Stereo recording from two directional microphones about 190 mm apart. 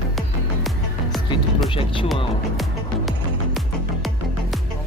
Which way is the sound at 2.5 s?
Centre (ahead or behind).